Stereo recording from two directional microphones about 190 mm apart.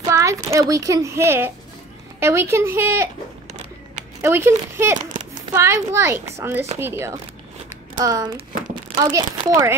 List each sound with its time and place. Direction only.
0.1 s a child's voice: 15° right (ahead or behind)
4.2 s a child's voice: 10° right (ahead or behind)